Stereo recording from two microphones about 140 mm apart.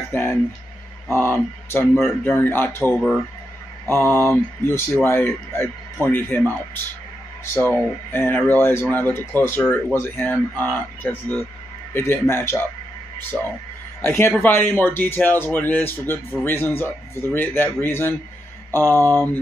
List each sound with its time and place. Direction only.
0.1 s speech: 15° left (ahead or behind)
13.3 s speech: centre (ahead or behind)
14.0 s speech: 15° left (ahead or behind)
18.8 s speech: 25° right (ahead or behind)